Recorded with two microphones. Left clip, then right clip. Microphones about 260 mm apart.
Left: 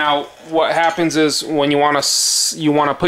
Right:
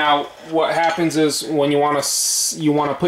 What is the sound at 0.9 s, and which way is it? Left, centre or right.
Speech, right.